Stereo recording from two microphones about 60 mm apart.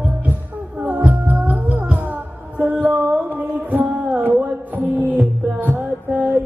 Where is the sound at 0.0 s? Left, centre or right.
Right.